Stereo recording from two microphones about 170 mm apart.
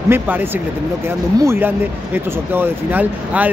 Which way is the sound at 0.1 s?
10° right (ahead or behind).